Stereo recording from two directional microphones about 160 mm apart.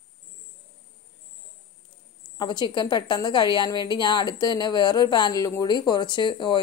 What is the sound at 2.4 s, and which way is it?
A woman's voice, 25° left (ahead or behind).